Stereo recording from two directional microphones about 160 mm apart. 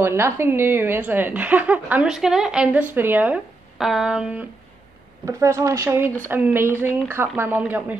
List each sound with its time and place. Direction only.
0.0 s a woman's voice: 15° right (ahead or behind)
5.2 s a woman's voice: 20° right (ahead or behind)